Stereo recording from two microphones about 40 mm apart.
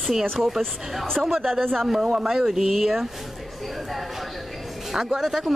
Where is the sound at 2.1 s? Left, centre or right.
Centre.